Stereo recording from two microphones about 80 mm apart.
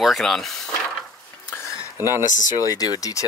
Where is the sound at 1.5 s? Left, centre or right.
Left.